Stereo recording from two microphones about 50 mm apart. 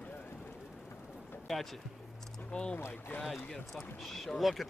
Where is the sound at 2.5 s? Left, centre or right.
Left.